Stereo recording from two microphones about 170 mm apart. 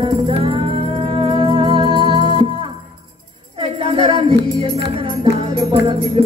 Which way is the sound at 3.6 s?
30° right (ahead or behind).